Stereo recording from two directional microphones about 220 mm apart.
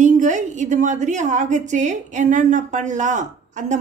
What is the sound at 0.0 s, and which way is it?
A woman's voice, 35° right (ahead or behind).